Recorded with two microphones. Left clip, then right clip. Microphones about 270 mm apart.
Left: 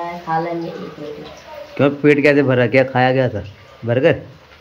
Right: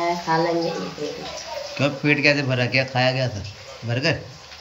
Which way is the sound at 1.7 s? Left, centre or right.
Centre.